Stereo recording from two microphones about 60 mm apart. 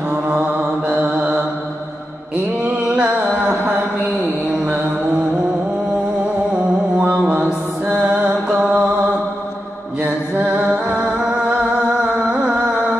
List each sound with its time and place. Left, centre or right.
0.4 s mantra: right
2.8 s music: centre
6.5 s music: centre
10.4 s music: centre